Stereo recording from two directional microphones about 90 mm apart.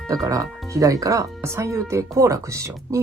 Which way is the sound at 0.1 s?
40° right (ahead or behind).